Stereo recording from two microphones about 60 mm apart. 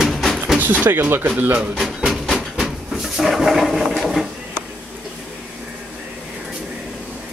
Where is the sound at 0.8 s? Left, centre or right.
Right.